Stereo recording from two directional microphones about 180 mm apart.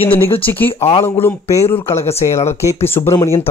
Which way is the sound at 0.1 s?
10° left (ahead or behind).